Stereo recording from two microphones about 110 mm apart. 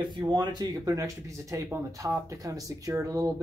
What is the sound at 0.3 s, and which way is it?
Speech, 40° right (ahead or behind).